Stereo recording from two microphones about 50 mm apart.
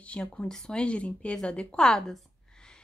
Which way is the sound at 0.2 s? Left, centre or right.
Centre.